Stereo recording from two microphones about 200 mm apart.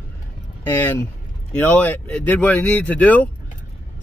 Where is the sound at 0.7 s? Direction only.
10° left (ahead or behind).